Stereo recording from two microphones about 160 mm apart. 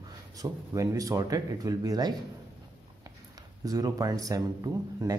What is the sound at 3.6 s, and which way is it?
Speech, 25° right (ahead or behind).